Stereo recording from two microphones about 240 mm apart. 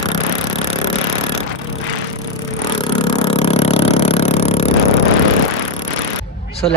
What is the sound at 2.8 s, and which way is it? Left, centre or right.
Vehicle, left.